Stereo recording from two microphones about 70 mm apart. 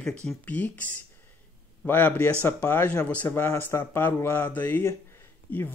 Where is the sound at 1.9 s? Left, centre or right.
Left.